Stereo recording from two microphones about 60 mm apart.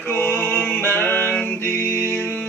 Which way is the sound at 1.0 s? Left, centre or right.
Left.